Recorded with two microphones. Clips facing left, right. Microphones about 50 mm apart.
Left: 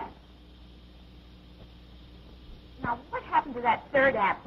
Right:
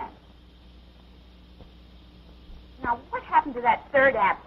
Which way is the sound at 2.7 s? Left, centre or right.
Centre.